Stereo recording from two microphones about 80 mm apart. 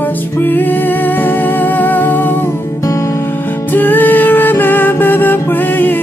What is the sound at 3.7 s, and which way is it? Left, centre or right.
Music, left.